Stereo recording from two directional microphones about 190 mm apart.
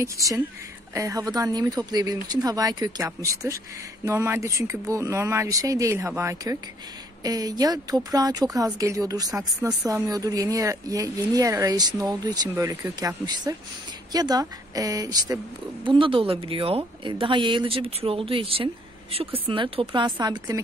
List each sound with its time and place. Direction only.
0.0 s speech: 15° right (ahead or behind)